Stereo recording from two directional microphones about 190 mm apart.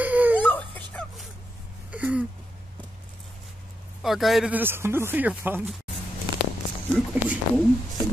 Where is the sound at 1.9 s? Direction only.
5° right (ahead or behind).